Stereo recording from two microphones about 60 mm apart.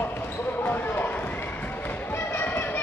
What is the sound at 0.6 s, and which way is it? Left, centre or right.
Basketball bounce, left.